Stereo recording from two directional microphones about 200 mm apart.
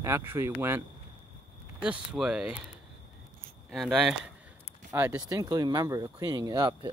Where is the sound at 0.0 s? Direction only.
10° right (ahead or behind).